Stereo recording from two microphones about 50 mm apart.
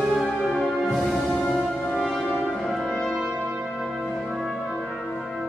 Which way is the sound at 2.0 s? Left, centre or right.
Centre.